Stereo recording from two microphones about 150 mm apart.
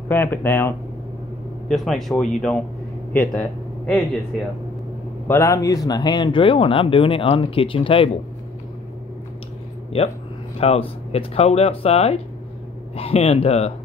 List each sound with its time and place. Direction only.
0.1 s speech: 15° left (ahead or behind)
1.7 s speech: centre (ahead or behind)
5.3 s speech: 20° left (ahead or behind); by 8.1 s 35° left (ahead or behind)
10.6 s speech: 45° left (ahead or behind)